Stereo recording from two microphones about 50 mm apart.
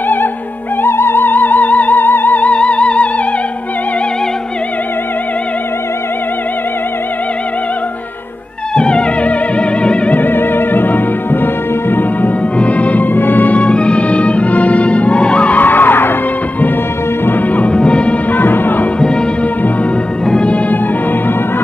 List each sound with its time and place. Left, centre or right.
0.8 s music: left
8.7 s music: centre
10.1 s music: left
12.5 s music: left
15.6 s music: left
17.7 s music: left
18.3 s music: left
20.2 s music: left